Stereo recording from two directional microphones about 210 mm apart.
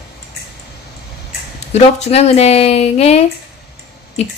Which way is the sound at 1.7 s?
30° left (ahead or behind).